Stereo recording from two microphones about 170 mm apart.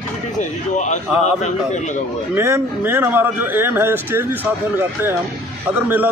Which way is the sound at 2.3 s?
15° right (ahead or behind).